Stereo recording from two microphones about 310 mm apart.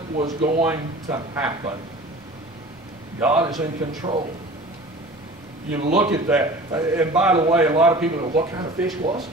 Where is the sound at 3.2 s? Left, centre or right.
Centre.